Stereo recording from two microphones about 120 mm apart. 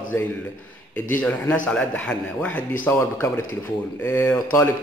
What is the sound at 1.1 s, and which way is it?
A man's voice, 10° left (ahead or behind).